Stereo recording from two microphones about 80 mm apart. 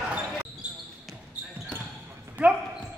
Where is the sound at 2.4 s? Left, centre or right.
Centre.